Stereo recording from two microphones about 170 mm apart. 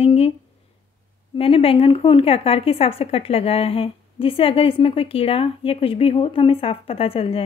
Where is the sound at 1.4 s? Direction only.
35° left (ahead or behind).